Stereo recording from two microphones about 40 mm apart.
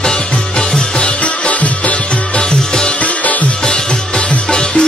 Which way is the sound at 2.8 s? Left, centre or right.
Left.